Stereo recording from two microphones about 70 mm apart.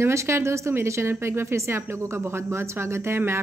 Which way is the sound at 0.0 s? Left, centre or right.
Right.